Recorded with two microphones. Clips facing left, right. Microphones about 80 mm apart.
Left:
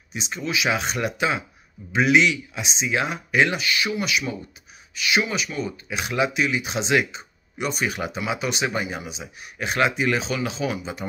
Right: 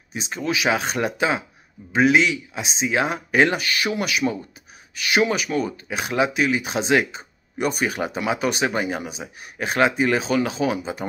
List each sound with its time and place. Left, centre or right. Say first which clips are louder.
0.1 s speech: right 2 dB; right
5.9 s speech: left 1 dB; right